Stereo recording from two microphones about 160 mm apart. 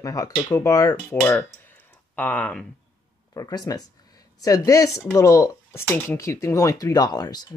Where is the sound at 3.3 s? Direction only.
25° left (ahead or behind).